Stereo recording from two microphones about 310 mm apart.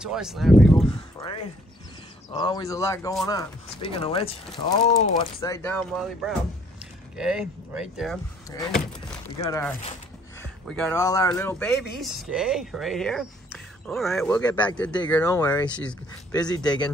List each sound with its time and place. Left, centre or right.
0.0 s speech: centre
0.8 s speech: centre
5.4 s speech: centre